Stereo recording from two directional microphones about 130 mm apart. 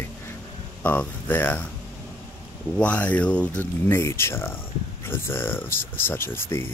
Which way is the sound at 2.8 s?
10° left (ahead or behind).